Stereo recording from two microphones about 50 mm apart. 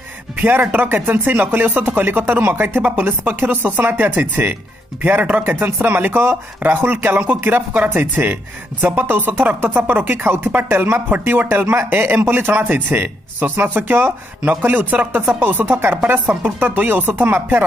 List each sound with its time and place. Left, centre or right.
0.4 s speech: right
2.8 s speech: right
7.7 s speech: right
11.1 s speech: right
12.3 s speech: right
14.6 s speech: right